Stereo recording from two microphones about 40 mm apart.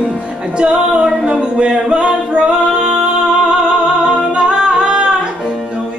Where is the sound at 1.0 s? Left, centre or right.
Right.